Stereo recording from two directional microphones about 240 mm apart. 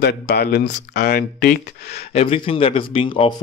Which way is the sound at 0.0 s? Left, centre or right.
Left.